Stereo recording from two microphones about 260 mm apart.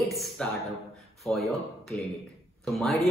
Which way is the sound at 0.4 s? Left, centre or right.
Centre.